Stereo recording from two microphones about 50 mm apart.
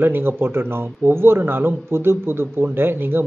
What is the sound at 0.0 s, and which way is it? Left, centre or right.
Speech, right.